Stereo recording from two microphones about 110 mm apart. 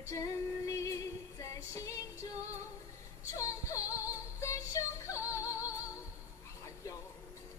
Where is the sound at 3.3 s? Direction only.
30° left (ahead or behind).